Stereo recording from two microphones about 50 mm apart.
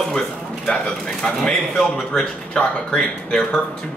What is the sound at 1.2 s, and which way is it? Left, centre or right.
Speech, centre.